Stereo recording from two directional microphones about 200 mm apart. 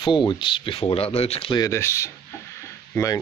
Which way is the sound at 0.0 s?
25° left (ahead or behind).